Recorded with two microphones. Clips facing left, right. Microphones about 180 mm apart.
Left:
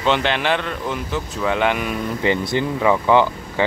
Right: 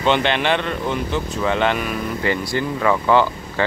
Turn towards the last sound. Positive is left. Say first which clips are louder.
# left 1 dB
turn(degrees=15)  # may be behind; listen again after turning